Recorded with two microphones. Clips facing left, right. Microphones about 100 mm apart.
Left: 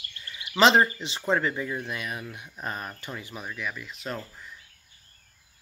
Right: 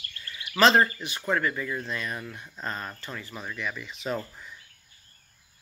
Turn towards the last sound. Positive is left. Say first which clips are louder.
# right 4 dB
turn(degrees=0)  # may be behind; listen again after turning